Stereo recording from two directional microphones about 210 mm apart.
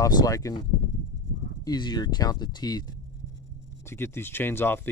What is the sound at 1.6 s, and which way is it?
Speech, 20° left (ahead or behind).